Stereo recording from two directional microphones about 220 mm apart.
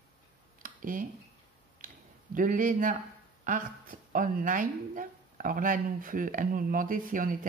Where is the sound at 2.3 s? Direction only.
35° right (ahead or behind).